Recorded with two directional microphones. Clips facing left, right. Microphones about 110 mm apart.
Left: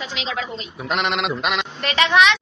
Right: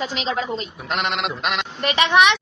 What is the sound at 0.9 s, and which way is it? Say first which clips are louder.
Speech: left 2 dB; centre (ahead or behind).